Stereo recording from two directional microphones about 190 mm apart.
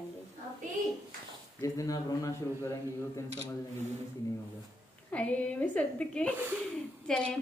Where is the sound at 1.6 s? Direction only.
20° left (ahead or behind).